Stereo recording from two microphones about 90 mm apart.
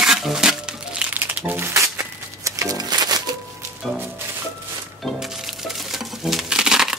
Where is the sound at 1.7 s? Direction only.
35° right (ahead or behind); by 3.2 s 50° right (ahead or behind).